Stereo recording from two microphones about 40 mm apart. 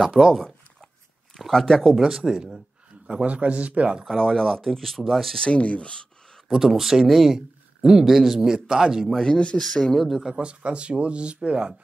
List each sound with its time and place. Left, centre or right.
0.3 s a sound: centre
1.5 s speech: centre
2.0 s speech: centre
3.1 s speech: right
4.0 s speech: centre
5.4 s speech: left
6.5 s speech: centre
9.2 s speech: left
9.9 s speech: centre
10.4 s speech: right